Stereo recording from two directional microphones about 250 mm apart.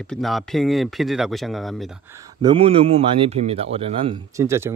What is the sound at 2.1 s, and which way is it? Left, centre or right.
Speech, centre.